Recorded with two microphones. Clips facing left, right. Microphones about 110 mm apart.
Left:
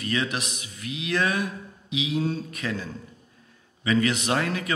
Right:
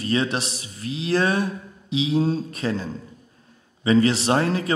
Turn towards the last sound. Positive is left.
turn(degrees=-30)  # may be behind; listen again after turning